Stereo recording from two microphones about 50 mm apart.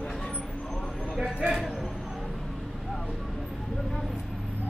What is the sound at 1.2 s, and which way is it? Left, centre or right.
Speech, centre.